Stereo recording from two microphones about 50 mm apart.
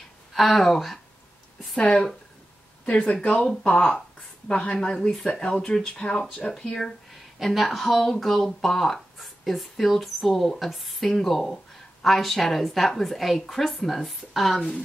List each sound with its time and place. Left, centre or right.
0.3 s speech: centre
2.8 s speech: left; by 14.7 s centre